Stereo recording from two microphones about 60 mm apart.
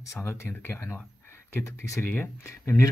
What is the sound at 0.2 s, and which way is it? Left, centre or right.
Speech, left.